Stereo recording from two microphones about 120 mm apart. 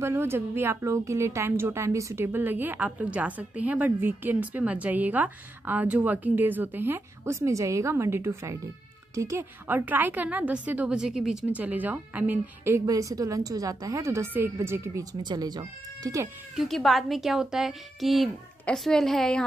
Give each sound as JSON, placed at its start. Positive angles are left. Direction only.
{"t": 0.0, "sound": "a woman's voice", "side_deg": -20}
{"t": 12.8, "sound": "a woman's voice", "side_deg": -30}
{"t": 15.2, "sound": "speech", "side_deg": -35}
{"t": 16.5, "sound": "speech", "side_deg": 0}